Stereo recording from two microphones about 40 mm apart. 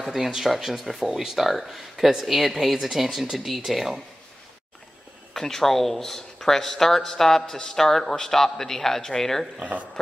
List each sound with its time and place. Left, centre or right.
0.0 s speech: centre
5.3 s speech: centre
9.6 s speech: right